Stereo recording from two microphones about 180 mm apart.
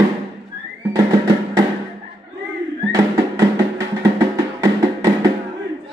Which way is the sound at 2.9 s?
20° right (ahead or behind).